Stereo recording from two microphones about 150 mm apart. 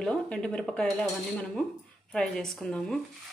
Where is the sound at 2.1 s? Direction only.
5° left (ahead or behind).